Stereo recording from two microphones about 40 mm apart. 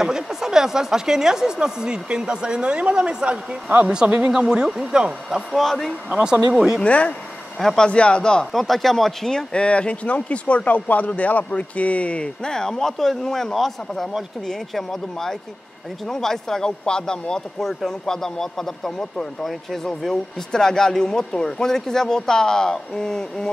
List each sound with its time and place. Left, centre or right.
0.0 s a woman's voice: centre
5.5 s a man's voice: centre
6.5 s a woman's voice: centre
6.8 s speech: left
7.5 s speech: centre
7.8 s speech: left
8.5 s speech: centre
9.5 s speech: left
12.4 s speech: centre
17.6 s speech: centre